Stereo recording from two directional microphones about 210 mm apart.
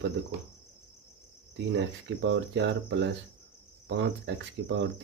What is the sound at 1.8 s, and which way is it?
Speech, 55° right (ahead or behind).